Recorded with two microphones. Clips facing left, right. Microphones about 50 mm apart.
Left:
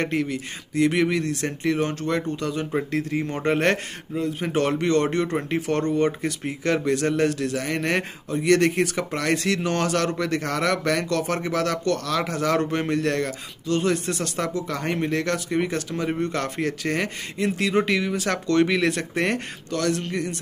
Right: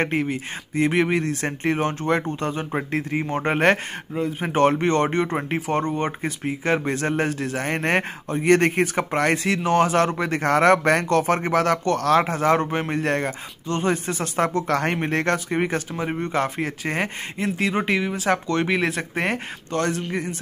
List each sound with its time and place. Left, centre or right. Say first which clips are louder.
0.0 s speech: right 2 dB; right
9.4 s speech: right 4 dB; right
10.5 s speech: right 9 dB; right
12.3 s speech: right 3 dB; right
14.4 s speech: right 8 dB; right
15.0 s speech: right 2 dB; right
16.1 s speech: right 4 dB; centre
19.7 s speech: right 1 dB; right